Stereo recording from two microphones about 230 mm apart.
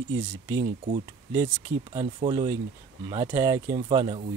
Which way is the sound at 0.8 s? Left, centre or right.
Right.